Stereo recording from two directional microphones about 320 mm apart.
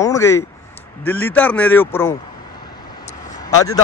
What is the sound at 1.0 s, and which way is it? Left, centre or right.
A man's voice, centre.